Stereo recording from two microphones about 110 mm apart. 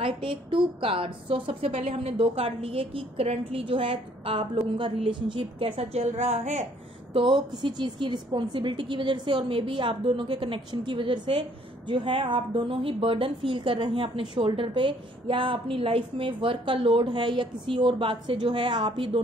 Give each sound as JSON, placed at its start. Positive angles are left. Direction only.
{"t": 0.0, "sound": "a woman's voice", "side_deg": -55}
{"t": 7.2, "sound": "a woman's voice", "side_deg": -45}